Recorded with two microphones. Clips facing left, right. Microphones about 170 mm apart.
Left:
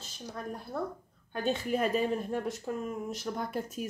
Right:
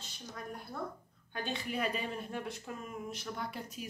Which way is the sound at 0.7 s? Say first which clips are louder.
Left 6 dB; 40° left (ahead or behind).